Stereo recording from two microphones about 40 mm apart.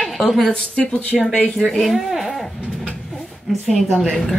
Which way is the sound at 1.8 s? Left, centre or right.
Centre.